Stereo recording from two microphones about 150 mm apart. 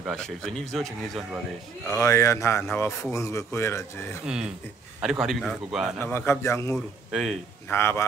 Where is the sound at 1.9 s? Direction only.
20° left (ahead or behind).